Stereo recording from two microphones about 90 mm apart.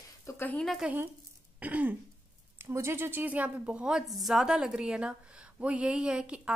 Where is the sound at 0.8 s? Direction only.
10° right (ahead or behind).